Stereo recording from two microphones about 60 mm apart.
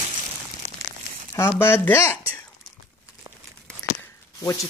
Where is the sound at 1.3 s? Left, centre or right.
Left.